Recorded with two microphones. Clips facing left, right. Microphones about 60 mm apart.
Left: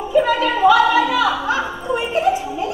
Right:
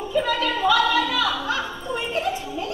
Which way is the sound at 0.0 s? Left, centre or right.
Centre.